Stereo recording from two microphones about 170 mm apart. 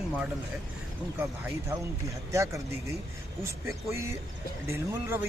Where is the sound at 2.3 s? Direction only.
15° right (ahead or behind).